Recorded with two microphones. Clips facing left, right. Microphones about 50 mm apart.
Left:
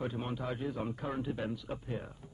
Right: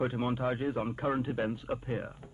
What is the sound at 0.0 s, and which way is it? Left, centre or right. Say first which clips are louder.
A man's voice: right 6 dB; right.